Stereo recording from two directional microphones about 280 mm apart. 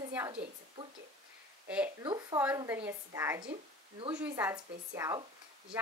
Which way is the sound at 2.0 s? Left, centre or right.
Centre.